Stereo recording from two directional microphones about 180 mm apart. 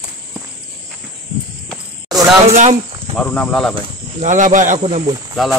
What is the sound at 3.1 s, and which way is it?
Speech, 5° left (ahead or behind).